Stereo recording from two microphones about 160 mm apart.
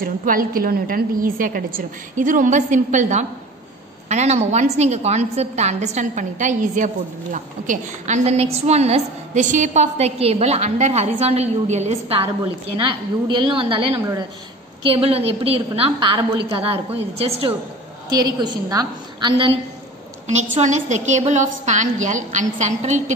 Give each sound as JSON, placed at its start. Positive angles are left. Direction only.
{"t": 0.0, "sound": "a woman's voice", "side_deg": -60}
{"t": 13.3, "sound": "a woman's voice", "side_deg": -30}
{"t": 20.2, "sound": "a woman's voice", "side_deg": -45}